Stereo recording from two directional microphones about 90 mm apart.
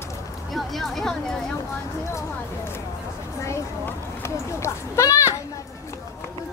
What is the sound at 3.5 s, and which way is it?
A child's voice, 30° left (ahead or behind).